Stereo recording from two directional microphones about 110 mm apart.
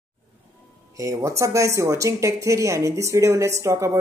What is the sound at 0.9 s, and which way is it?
Speech, 30° right (ahead or behind).